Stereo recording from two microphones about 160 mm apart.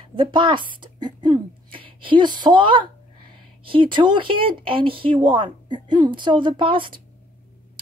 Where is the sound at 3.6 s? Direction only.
30° right (ahead or behind).